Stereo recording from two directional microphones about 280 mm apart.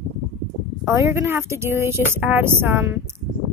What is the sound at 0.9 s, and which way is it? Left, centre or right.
Speech, centre.